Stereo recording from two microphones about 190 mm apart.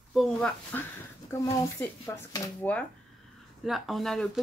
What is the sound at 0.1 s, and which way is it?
Speech, centre (ahead or behind).